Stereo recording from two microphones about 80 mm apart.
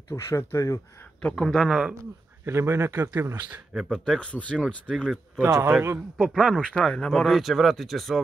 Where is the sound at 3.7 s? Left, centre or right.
Centre.